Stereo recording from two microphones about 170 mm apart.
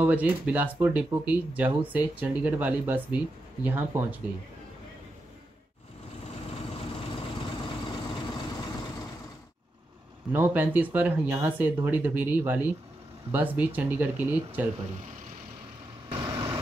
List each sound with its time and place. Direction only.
0.0 s speech: 10° right (ahead or behind)
6.7 s vehicle: 30° left (ahead or behind)
10.3 s speech: 10° right (ahead or behind)
16.1 s vehicle: 25° right (ahead or behind)